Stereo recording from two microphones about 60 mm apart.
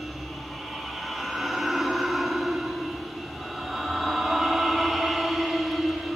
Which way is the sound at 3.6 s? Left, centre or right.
Centre.